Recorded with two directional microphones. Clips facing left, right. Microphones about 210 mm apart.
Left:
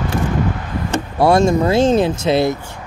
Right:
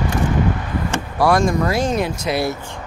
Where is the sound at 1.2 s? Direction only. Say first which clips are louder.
Left 3 dB; 25° left (ahead or behind).